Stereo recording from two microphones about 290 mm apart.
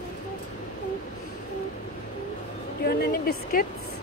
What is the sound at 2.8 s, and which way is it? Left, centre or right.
Speech, left.